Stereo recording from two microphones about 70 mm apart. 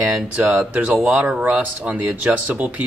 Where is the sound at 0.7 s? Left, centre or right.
Centre.